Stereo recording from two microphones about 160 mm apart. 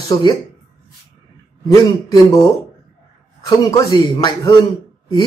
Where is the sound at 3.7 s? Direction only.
25° left (ahead or behind).